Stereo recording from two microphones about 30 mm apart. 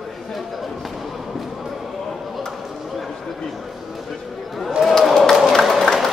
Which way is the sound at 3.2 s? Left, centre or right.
Centre.